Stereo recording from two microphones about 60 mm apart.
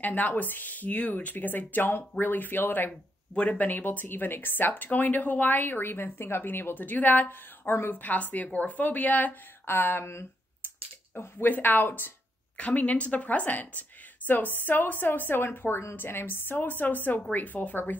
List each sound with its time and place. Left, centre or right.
0.0 s speech: left
3.3 s speech: left
11.3 s speech: left